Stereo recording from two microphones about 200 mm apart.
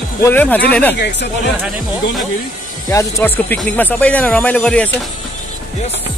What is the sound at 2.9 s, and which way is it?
Speech, 15° left (ahead or behind).